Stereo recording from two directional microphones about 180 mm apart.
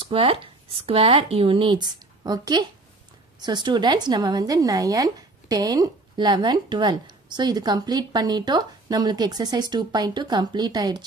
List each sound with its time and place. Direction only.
0.0 s speech: 30° right (ahead or behind)